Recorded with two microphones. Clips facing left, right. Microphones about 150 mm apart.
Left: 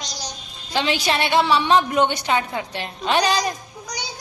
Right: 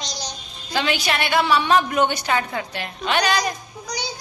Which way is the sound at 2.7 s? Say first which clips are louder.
Left 2 dB; 30° left (ahead or behind).